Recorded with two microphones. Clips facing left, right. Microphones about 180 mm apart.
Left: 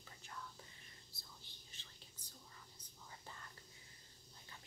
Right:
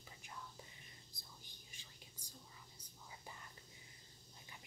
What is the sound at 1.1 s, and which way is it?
Whispering, 15° right (ahead or behind).